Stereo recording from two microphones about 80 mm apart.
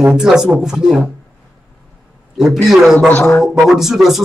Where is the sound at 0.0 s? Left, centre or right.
Centre.